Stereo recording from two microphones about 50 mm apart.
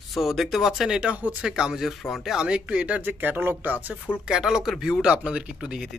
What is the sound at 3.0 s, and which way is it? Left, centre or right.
Speech, right.